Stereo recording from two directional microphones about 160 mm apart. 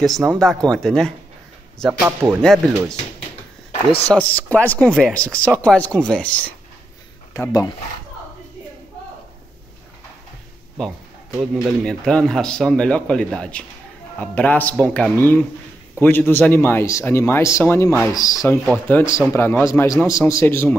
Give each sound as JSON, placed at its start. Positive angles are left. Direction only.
{"t": 0.0, "sound": "a man's voice", "side_deg": 0}
{"t": 3.7, "sound": "speech", "side_deg": 35}
{"t": 4.1, "sound": "speech", "side_deg": 10}
{"t": 7.3, "sound": "speech", "side_deg": 20}
{"t": 11.8, "sound": "a man's voice", "side_deg": 5}
{"t": 18.7, "sound": "speech", "side_deg": 10}